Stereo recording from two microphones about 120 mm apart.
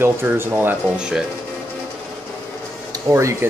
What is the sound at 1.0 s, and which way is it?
Speech, 5° right (ahead or behind).